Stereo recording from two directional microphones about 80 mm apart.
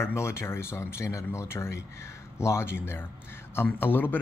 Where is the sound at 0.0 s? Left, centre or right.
Left.